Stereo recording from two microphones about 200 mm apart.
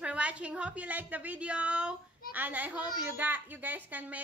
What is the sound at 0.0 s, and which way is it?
A child's voice, 5° right (ahead or behind).